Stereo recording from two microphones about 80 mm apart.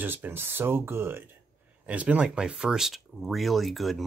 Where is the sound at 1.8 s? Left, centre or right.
Centre.